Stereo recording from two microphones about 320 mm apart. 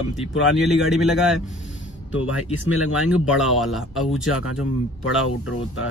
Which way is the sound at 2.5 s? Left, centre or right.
Left.